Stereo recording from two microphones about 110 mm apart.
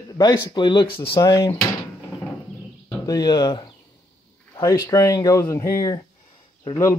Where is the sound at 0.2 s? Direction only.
40° left (ahead or behind).